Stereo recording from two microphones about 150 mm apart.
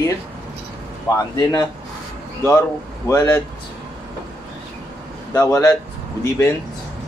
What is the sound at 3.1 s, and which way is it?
Speech, 20° left (ahead or behind).